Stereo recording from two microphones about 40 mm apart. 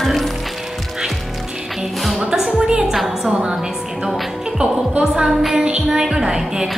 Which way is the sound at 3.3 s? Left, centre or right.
Right.